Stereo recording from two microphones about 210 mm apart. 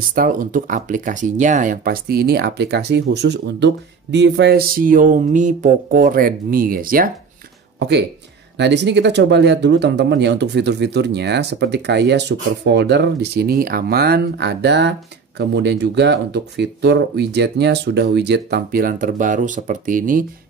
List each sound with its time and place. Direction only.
0.1 s speech: 40° right (ahead or behind)
8.5 s speech: 55° right (ahead or behind)